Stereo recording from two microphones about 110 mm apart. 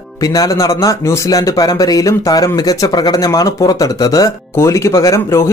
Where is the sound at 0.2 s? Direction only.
35° left (ahead or behind).